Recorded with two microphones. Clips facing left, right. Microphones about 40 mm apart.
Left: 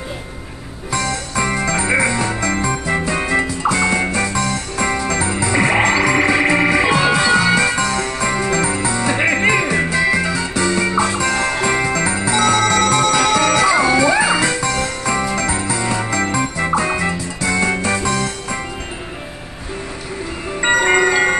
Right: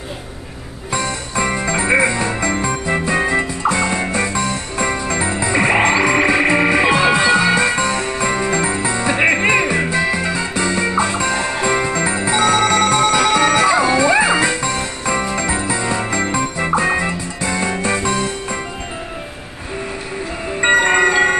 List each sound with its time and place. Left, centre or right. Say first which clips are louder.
0.9 s music: even; centre
4.8 s frog: left 1 dB; centre
20.6 s music: right 1 dB; centre